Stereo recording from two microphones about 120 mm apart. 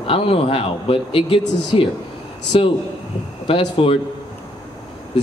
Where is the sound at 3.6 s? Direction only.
55° left (ahead or behind).